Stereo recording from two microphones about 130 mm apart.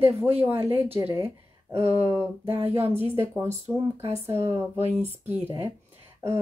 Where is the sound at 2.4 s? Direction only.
45° right (ahead or behind).